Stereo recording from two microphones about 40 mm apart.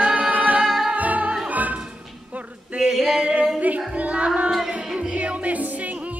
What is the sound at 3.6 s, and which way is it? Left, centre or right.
Music, right.